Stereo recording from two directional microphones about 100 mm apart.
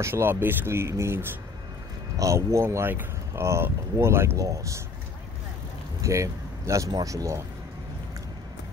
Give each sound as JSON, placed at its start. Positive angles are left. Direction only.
{"t": 0.0, "sound": "speech", "side_deg": -25}
{"t": 5.9, "sound": "speech", "side_deg": -30}